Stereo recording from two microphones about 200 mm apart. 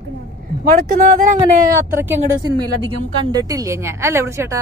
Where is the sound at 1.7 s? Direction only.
10° right (ahead or behind).